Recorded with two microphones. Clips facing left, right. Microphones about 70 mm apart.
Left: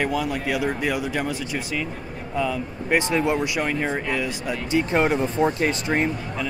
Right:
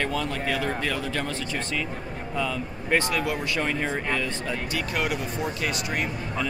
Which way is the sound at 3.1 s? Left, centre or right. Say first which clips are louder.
Left 5 dB; left.